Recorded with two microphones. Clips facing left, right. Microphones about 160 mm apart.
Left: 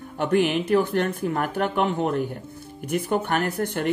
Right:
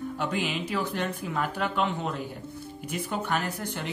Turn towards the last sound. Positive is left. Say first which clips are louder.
# left 8 dB
turn(degrees=55)  # may be behind; listen again after turning